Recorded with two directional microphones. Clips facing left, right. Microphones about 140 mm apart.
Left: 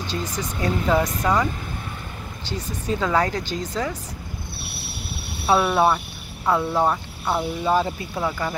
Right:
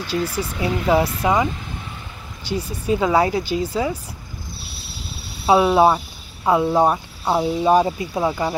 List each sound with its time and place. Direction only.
0.3 s speech: 10° right (ahead or behind)
4.6 s cricket: 65° left (ahead or behind)
5.7 s speech: 20° right (ahead or behind)